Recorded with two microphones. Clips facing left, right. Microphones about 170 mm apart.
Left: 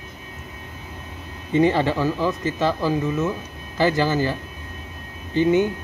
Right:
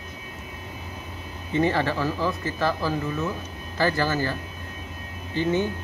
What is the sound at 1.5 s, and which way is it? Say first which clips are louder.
Speech: left 5 dB; 15° left (ahead or behind).